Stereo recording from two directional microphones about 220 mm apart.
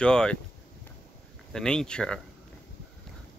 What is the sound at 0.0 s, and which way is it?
Speech, 5° left (ahead or behind).